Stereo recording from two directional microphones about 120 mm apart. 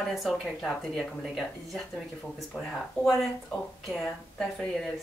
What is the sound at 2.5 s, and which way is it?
Speech, centre (ahead or behind).